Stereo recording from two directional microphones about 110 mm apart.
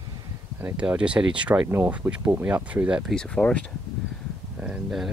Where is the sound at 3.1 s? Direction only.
10° left (ahead or behind).